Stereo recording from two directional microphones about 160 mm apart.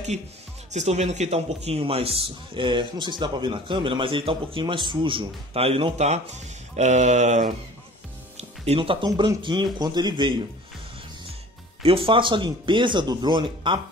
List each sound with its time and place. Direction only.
0.7 s a man's voice: 45° right (ahead or behind)
8.4 s speech: 35° right (ahead or behind)
11.8 s a man's voice: 35° right (ahead or behind)